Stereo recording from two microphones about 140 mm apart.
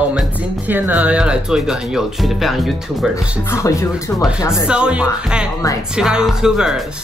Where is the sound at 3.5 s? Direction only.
20° left (ahead or behind).